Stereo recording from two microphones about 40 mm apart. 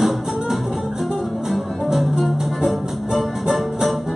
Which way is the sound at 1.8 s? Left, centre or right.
Centre.